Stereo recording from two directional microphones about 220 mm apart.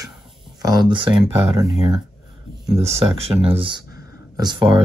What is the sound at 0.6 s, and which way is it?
Speech, 20° right (ahead or behind).